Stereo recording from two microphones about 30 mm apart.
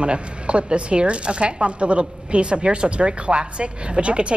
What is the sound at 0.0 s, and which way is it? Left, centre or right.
A woman's voice, right.